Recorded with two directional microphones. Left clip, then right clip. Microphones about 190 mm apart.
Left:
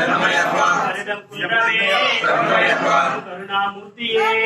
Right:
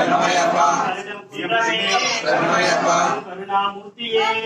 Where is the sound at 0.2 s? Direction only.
45° left (ahead or behind).